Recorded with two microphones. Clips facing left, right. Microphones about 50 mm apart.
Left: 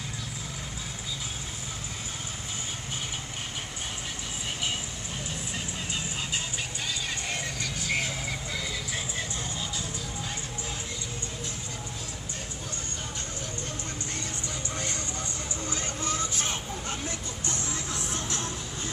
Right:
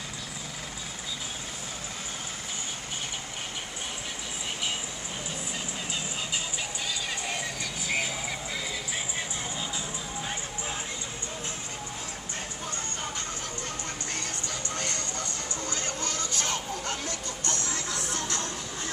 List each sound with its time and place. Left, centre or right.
7.2 s music: centre
14.8 s music: right